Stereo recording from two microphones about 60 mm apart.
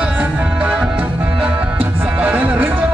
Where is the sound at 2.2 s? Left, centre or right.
Right.